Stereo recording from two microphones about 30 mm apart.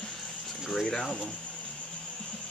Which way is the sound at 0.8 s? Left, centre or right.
Centre.